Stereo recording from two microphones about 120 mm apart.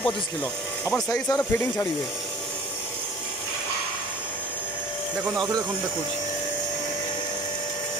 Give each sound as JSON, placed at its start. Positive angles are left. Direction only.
{"t": 0.0, "sound": "speech", "side_deg": 15}